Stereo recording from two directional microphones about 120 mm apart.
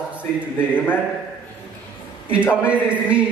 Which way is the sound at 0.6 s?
15° left (ahead or behind).